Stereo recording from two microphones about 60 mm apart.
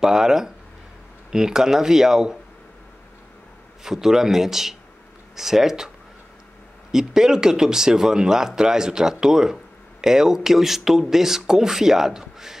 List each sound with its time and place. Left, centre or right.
0.0 s speech: centre
3.8 s speech: centre
6.9 s speech: centre